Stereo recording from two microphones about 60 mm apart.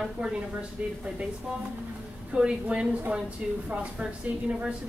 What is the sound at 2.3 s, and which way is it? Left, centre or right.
Speech, centre.